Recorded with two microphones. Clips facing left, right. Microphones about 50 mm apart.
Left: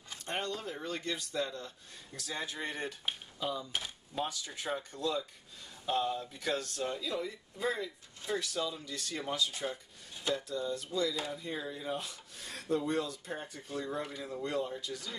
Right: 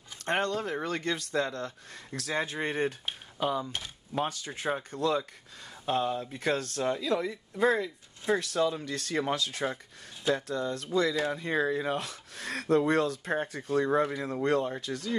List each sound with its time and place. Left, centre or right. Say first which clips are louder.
0.2 s speech: right 8 dB; right
3.3 s speech: right 8 dB; right
4.5 s speech: right 5 dB; right